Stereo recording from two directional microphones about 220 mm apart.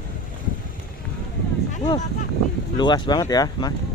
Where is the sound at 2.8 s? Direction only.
20° left (ahead or behind).